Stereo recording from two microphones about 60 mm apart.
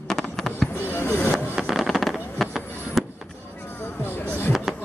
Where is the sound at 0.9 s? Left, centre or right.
Left.